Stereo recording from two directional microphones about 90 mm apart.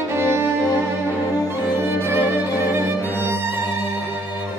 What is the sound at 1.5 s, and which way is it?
Violin, 25° right (ahead or behind).